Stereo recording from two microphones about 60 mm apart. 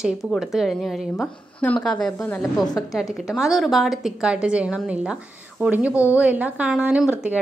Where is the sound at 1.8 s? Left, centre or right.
Centre.